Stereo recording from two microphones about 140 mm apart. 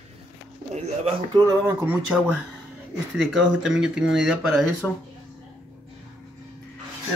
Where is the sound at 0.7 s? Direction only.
50° right (ahead or behind).